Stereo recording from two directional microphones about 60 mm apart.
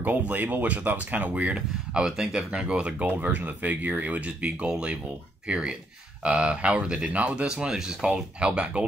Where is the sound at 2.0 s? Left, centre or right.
Centre.